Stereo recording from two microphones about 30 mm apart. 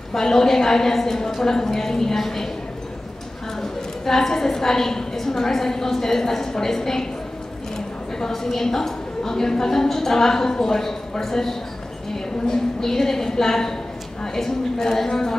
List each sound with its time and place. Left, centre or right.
0.1 s a woman's voice: centre
4.0 s a woman's voice: centre
8.3 s a woman's voice: centre